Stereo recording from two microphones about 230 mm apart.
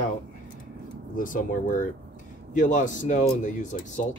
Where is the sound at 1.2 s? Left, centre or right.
Left.